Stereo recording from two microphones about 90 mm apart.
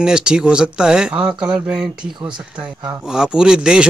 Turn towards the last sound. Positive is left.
turn(degrees=-10)  # may be behind; listen again after turning